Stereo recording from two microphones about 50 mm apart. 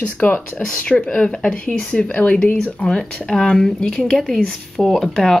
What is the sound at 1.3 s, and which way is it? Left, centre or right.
Speech, centre.